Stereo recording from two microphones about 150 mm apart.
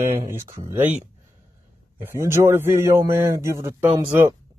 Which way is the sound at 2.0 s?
15° right (ahead or behind).